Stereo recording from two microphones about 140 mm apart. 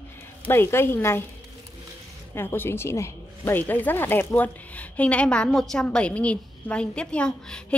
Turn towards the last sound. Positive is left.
turn(degrees=5)  # may be behind; listen again after turning